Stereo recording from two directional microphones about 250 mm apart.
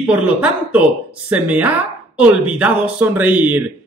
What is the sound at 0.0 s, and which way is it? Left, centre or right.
Speech, centre.